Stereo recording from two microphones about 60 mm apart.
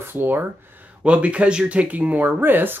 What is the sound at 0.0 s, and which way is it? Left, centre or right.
Speech, right.